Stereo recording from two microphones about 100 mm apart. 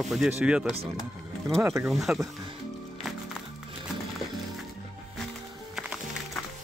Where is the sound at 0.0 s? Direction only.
5° right (ahead or behind).